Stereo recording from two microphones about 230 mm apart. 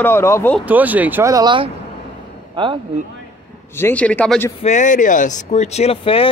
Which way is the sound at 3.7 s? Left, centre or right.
Centre.